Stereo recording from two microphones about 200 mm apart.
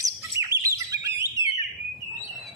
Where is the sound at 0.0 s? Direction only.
15° right (ahead or behind).